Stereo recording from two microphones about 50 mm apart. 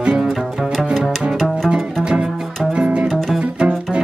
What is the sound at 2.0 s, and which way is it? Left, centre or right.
Music, centre.